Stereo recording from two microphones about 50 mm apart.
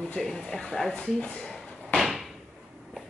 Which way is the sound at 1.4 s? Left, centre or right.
Centre.